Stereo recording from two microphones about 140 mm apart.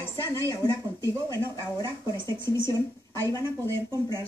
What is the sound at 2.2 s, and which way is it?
Speech, 35° right (ahead or behind).